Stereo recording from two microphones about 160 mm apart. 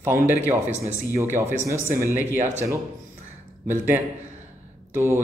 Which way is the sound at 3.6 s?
15° right (ahead or behind).